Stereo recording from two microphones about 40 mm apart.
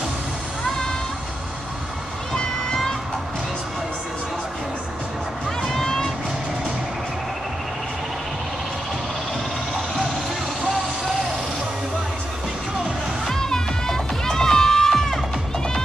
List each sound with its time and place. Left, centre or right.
2.3 s a sound: centre
5.6 s vehicle: centre
13.3 s music: centre